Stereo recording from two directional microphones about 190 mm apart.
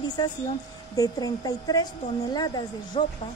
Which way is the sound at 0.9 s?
20° left (ahead or behind).